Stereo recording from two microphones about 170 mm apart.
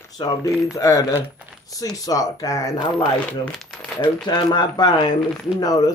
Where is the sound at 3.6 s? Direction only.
5° left (ahead or behind).